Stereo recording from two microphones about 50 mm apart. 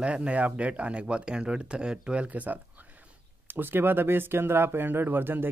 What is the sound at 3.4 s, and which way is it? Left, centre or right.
Speech, right.